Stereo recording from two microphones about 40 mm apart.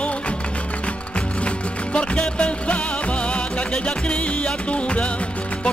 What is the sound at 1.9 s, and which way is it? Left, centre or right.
Music, left.